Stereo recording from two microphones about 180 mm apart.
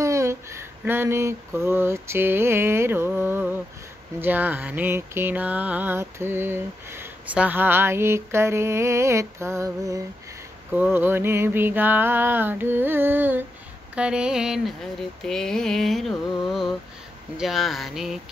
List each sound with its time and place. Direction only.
0.0 s female singing: 15° right (ahead or behind)
4.2 s mantra: 10° right (ahead or behind)
13.9 s a sound: 5° right (ahead or behind)